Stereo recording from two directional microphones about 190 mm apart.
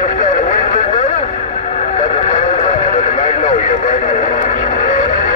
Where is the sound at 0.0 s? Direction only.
40° left (ahead or behind).